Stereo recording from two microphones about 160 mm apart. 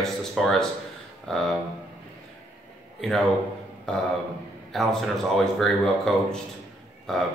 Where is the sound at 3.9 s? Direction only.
5° left (ahead or behind).